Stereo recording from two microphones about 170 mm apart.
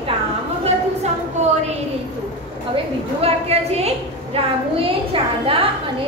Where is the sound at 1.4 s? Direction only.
40° right (ahead or behind).